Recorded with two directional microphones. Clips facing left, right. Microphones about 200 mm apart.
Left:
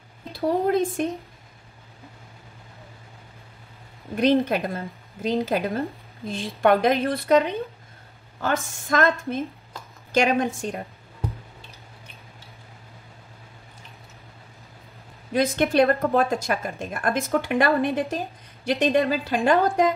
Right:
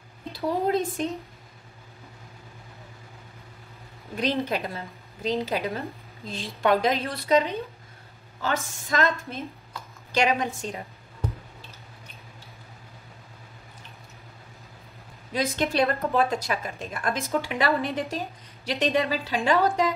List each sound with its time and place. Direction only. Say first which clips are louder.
0.3 s a woman's voice: left 3 dB; 50° left (ahead or behind)
4.2 s a woman's voice: left 6 dB; 50° left (ahead or behind)
15.3 s a woman's voice: left 5 dB; 50° left (ahead or behind)